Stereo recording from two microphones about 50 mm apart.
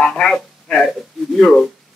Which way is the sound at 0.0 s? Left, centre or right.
Centre.